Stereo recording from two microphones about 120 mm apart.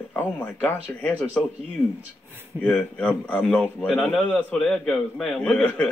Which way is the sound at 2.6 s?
10° left (ahead or behind).